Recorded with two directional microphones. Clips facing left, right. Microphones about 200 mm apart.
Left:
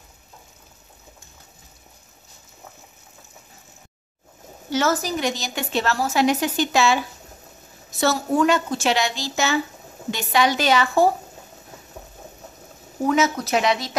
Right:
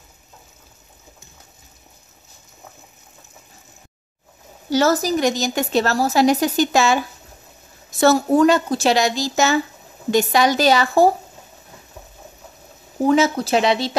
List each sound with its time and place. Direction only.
4.6 s a woman's voice: 35° right (ahead or behind)
13.0 s speech: 30° right (ahead or behind)